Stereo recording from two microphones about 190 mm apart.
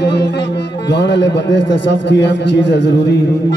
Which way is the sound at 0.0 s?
60° left (ahead or behind).